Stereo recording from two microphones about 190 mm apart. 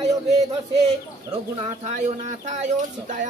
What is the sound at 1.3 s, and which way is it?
Speech, 35° right (ahead or behind).